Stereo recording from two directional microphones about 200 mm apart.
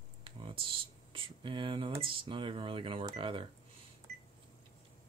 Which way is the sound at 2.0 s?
25° right (ahead or behind).